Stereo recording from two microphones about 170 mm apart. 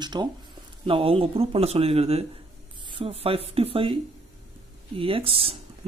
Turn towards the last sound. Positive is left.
turn(degrees=-35)  # may be behind; listen again after turning